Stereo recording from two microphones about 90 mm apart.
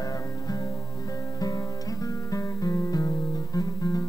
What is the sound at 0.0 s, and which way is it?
Music, 40° left (ahead or behind).